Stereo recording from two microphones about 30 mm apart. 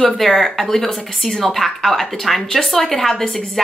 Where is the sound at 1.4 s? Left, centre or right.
Centre.